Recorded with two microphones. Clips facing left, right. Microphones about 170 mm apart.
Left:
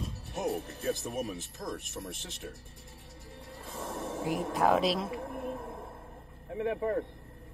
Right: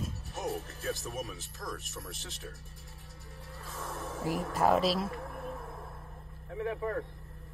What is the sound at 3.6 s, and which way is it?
Music, 25° left (ahead or behind).